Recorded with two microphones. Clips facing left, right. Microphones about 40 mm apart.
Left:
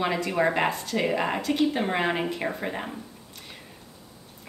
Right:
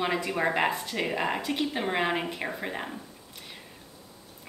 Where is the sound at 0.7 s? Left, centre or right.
Centre.